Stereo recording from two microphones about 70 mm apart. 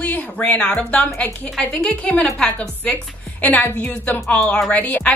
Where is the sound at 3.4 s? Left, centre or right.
Left.